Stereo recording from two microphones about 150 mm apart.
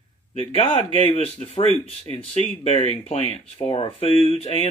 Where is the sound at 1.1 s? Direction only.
45° left (ahead or behind).